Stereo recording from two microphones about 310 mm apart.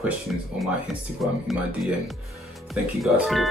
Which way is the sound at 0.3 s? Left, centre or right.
Centre.